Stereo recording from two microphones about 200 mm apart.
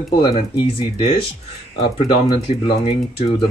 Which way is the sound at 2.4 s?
25° left (ahead or behind).